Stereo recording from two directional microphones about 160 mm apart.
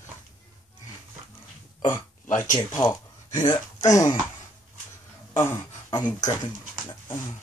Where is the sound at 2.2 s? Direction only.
50° left (ahead or behind).